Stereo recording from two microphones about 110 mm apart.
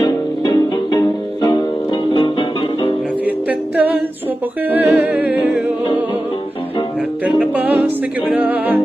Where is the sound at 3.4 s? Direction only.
15° right (ahead or behind).